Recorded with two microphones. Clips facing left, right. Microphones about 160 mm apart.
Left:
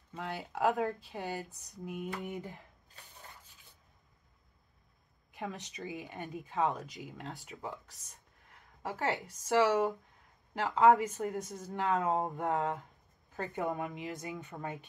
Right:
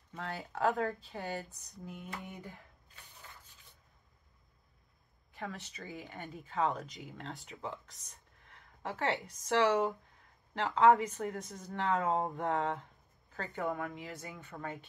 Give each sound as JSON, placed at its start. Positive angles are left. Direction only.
{"t": 0.1, "sound": "speech", "side_deg": 15}
{"t": 0.5, "sound": "speech", "side_deg": 5}
{"t": 0.7, "sound": "speech", "side_deg": 15}
{"t": 5.3, "sound": "speech", "side_deg": 20}
{"t": 6.6, "sound": "speech", "side_deg": 5}
{"t": 8.8, "sound": "speech", "side_deg": 0}
{"t": 13.4, "sound": "speech", "side_deg": 20}